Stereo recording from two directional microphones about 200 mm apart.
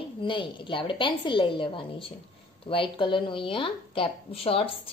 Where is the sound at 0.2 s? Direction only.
25° left (ahead or behind).